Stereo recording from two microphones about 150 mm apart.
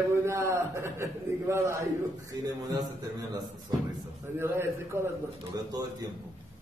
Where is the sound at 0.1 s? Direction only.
15° right (ahead or behind).